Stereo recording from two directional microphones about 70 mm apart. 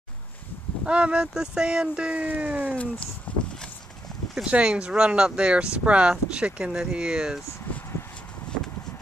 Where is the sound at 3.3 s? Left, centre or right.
Centre.